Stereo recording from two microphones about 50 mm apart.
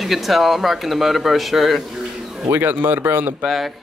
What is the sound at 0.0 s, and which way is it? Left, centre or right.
A man's voice, centre.